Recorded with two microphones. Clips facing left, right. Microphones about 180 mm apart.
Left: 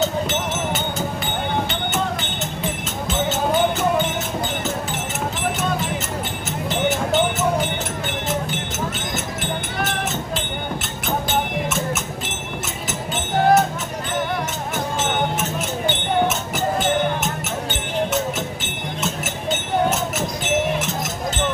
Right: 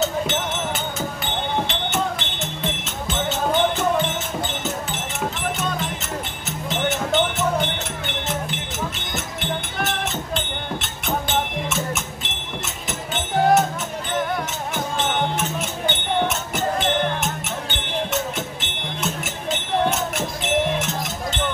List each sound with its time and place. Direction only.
0.0 s music: centre (ahead or behind)
6.7 s music: centre (ahead or behind)
15.9 s music: centre (ahead or behind)